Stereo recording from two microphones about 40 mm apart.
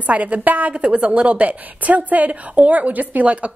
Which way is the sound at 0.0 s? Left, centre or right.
Right.